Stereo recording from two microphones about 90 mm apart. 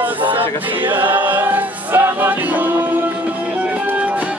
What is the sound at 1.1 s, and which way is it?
Choir, 20° right (ahead or behind).